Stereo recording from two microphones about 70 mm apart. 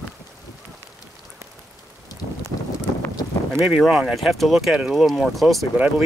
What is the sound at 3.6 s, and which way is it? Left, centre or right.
Speech, centre.